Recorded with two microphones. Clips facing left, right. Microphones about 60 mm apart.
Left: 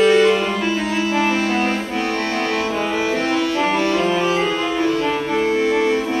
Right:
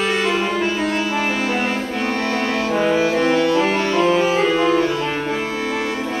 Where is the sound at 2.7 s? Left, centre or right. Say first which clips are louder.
Right 3 dB; centre.